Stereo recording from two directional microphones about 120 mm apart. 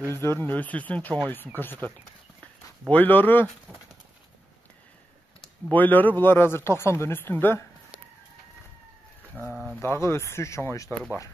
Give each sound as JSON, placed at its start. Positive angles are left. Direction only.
{"t": 0.1, "sound": "speech", "side_deg": 20}
{"t": 2.9, "sound": "speech", "side_deg": 15}
{"t": 5.7, "sound": "speech", "side_deg": 15}
{"t": 9.3, "sound": "speech", "side_deg": -15}
{"t": 9.8, "sound": "speech", "side_deg": 20}